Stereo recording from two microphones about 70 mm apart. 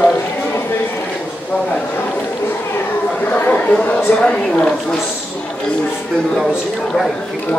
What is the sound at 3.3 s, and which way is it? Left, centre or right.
Speech, left.